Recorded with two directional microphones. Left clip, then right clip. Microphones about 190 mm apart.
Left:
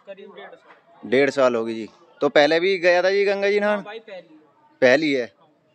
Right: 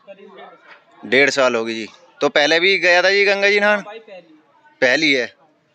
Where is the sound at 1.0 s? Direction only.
5° left (ahead or behind).